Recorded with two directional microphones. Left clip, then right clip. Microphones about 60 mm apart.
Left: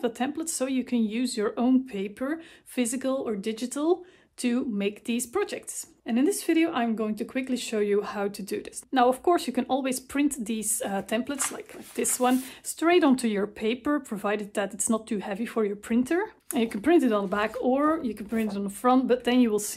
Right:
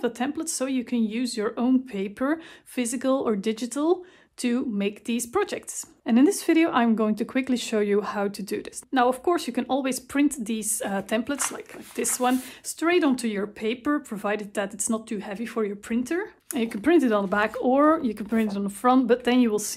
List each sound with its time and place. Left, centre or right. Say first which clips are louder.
0.0 s speech: right 1 dB; right
2.7 s speech: right 3 dB; centre
6.0 s speech: right 4 dB; right
7.7 s speech: right 2 dB; right; by 12.4 s centre
12.8 s speech: left 1 dB; centre
16.6 s speech: right 1 dB; centre